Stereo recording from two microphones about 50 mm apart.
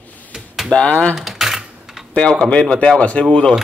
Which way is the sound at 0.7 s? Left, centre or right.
Left.